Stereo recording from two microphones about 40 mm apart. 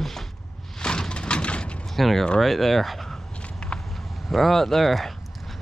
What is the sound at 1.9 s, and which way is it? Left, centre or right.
Speech, centre.